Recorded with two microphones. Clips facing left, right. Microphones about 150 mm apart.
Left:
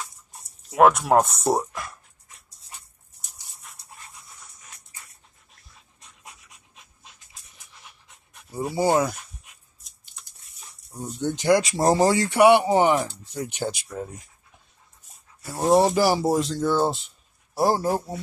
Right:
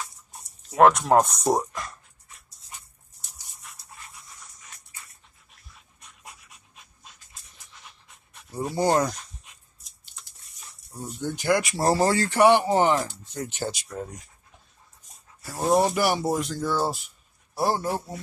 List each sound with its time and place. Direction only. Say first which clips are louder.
0.0 s speech: even; 5° left (ahead or behind)
8.4 s speech: left 1 dB; 10° left (ahead or behind)
10.9 s speech: left 4 dB; 15° left (ahead or behind)
15.7 s speech: left 3 dB; 30° left (ahead or behind)
17.6 s a man's voice: left 3 dB; 40° left (ahead or behind)